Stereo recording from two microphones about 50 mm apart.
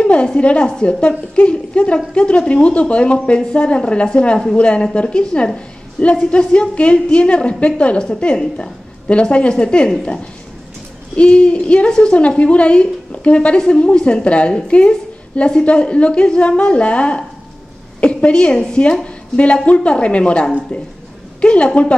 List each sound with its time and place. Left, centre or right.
0.0 s a sound: left
0.4 s a woman's voice: left
11.1 s a woman's voice: left